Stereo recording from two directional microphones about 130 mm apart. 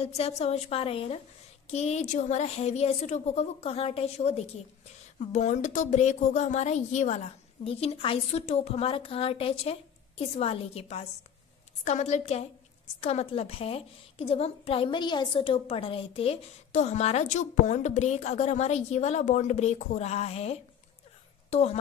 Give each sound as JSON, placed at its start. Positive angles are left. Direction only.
{"t": 0.0, "sound": "a woman's voice", "side_deg": 55}
{"t": 5.2, "sound": "a woman's voice", "side_deg": 65}
{"t": 7.6, "sound": "a woman's voice", "side_deg": 50}